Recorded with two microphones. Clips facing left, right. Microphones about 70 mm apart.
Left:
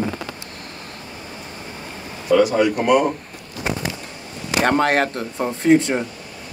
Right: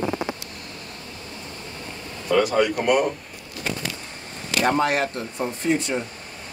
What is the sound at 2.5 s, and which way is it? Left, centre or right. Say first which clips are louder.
Speech: left 3 dB; left.